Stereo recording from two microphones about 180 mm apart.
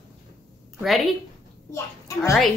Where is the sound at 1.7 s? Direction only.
15° left (ahead or behind).